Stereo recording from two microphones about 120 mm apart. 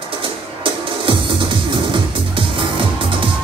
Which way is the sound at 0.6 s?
45° right (ahead or behind).